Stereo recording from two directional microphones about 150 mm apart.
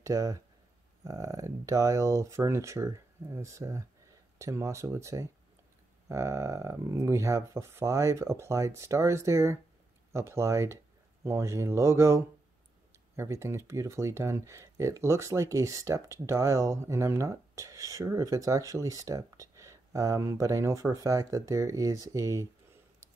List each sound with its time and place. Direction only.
0.0 s speech: 20° right (ahead or behind)